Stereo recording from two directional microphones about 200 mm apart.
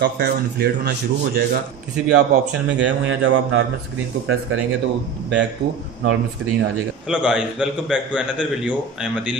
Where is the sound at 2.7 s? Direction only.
65° right (ahead or behind).